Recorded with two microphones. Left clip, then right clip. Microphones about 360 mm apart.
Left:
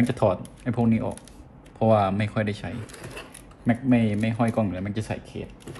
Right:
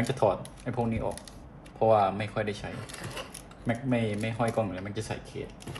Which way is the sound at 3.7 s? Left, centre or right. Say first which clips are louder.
Left 6 dB; centre.